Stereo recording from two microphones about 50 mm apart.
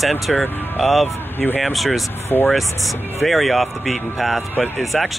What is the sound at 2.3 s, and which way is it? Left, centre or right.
Speech, left.